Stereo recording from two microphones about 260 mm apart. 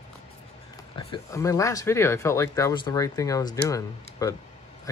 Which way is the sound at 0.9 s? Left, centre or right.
Centre.